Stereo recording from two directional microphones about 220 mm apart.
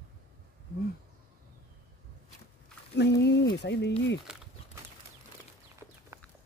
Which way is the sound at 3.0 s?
50° left (ahead or behind).